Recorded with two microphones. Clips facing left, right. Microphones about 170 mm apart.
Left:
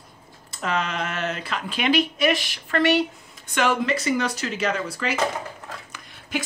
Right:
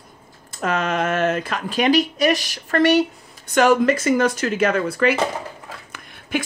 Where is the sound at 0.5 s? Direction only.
50° right (ahead or behind).